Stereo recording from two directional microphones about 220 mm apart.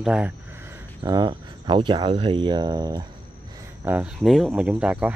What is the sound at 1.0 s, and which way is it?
Speech, 20° right (ahead or behind).